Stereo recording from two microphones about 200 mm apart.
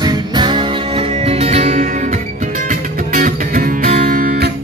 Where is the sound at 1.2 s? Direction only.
30° right (ahead or behind).